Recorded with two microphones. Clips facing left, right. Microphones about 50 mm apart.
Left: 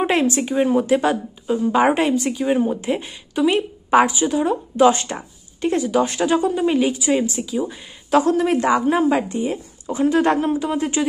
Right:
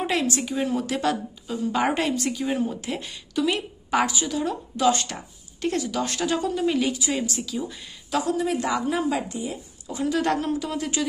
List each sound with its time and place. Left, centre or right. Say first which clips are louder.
0.0 s a woman's voice: left 6 dB; left
8.1 s a woman's voice: left 8 dB; left
8.6 s a woman's voice: left 7 dB; left